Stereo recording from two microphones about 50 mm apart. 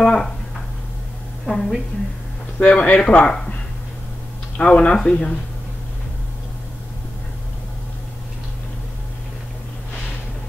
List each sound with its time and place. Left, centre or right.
0.0 s a sound: centre
1.4 s a woman's voice: centre
2.6 s speech: left
4.6 s speech: left